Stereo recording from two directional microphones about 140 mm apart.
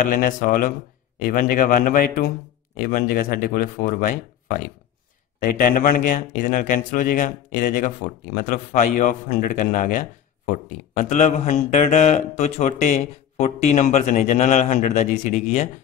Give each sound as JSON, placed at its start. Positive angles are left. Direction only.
{"t": 0.0, "sound": "speech", "side_deg": 70}